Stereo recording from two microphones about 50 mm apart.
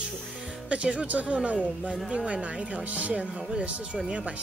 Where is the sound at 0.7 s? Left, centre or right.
Right.